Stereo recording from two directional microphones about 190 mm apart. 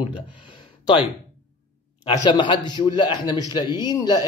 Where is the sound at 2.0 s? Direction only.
25° left (ahead or behind).